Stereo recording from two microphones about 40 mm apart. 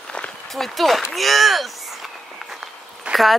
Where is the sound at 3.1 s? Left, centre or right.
Right.